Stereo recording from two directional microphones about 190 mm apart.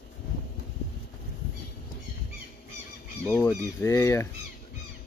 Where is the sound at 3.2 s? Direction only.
10° left (ahead or behind).